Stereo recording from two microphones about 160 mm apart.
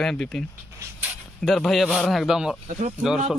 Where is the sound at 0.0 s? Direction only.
5° left (ahead or behind).